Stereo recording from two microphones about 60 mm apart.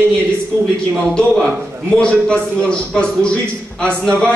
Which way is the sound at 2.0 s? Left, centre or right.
Centre.